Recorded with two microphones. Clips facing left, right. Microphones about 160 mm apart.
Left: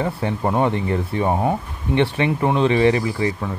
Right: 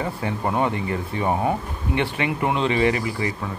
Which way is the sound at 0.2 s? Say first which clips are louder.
Left 2 dB; 25° left (ahead or behind).